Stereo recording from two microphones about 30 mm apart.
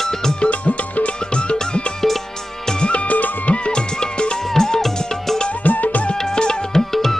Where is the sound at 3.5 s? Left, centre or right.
Left.